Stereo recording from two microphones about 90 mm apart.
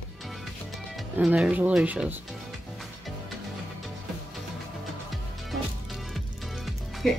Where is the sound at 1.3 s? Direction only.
15° right (ahead or behind).